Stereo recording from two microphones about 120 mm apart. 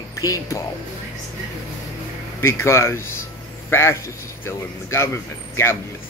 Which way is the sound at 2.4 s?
20° left (ahead or behind).